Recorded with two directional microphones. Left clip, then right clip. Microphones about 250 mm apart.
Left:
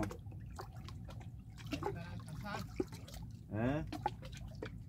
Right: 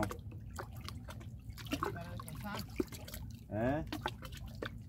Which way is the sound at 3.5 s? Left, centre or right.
Centre.